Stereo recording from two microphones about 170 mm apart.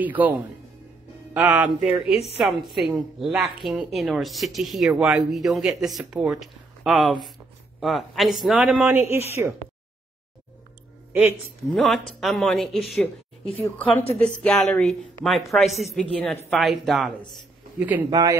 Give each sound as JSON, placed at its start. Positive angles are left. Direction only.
{"t": 0.0, "sound": "a woman's voice", "side_deg": -10}
{"t": 11.7, "sound": "a woman's voice", "side_deg": 0}
{"t": 13.7, "sound": "a woman's voice", "side_deg": 15}
{"t": 18.1, "sound": "speech", "side_deg": -20}